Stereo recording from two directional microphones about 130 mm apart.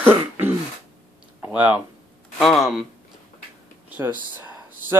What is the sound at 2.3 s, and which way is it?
Speech, centre (ahead or behind).